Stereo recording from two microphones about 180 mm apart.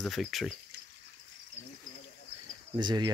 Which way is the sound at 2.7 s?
25° right (ahead or behind).